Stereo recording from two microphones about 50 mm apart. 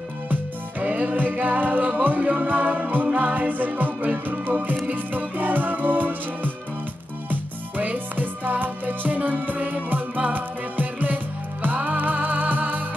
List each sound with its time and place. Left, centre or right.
0.3 s music: right